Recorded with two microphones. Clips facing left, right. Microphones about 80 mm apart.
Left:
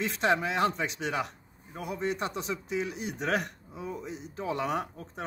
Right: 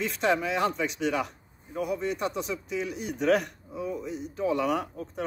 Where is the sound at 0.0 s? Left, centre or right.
Left.